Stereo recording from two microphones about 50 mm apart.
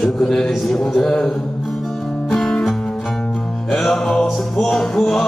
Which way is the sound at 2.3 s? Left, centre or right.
Centre.